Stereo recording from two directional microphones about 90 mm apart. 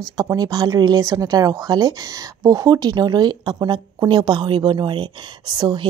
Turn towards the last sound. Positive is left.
turn(degrees=-50)  # may be behind; listen again after turning